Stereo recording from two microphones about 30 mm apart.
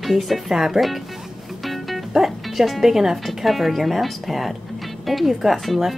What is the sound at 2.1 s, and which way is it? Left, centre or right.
Speech, centre.